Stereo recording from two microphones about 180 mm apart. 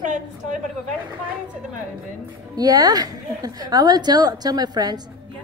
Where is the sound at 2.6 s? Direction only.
20° right (ahead or behind).